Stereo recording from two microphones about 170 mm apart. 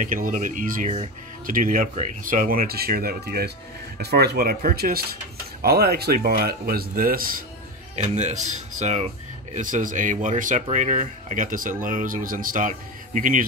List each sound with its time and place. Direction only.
0.0 s speech: 55° right (ahead or behind)
7.9 s speech: 40° right (ahead or behind)